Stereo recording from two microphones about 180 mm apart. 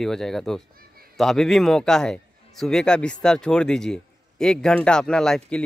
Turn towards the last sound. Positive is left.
turn(degrees=5)  # may be behind; listen again after turning